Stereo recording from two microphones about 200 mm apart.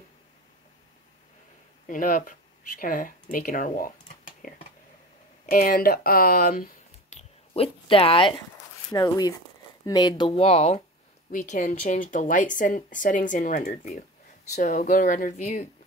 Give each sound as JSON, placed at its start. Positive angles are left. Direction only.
{"t": 1.9, "sound": "speech", "side_deg": 45}
{"t": 4.4, "sound": "a sound", "side_deg": 40}
{"t": 5.5, "sound": "speech", "side_deg": 45}